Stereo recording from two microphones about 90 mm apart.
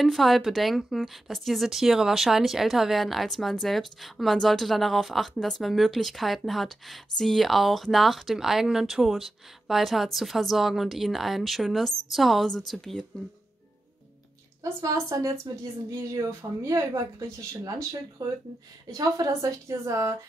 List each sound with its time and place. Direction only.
0.0 s speech: centre (ahead or behind)
14.6 s speech: 35° right (ahead or behind)